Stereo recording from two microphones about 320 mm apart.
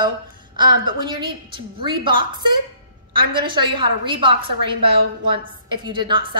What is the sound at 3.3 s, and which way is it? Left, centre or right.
A woman's voice, centre.